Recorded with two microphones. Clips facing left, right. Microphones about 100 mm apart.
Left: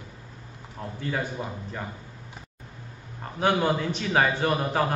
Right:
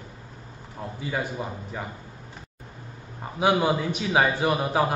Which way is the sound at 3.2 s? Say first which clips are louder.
Right 2 dB; 10° right (ahead or behind).